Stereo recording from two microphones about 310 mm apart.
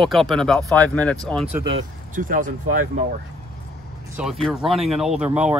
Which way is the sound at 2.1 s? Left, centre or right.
Right.